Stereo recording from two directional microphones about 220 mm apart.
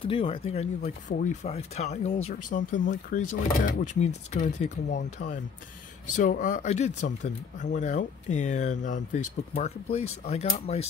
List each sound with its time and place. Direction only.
0.0 s speech: 25° left (ahead or behind)
2.7 s speech: 55° left (ahead or behind)
3.1 s speech: 35° left (ahead or behind)